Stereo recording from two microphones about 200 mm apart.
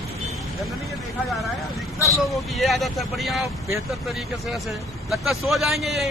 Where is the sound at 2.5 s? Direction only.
Centre (ahead or behind).